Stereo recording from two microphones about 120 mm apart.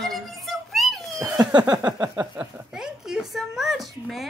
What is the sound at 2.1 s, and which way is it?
Speech, 10° right (ahead or behind).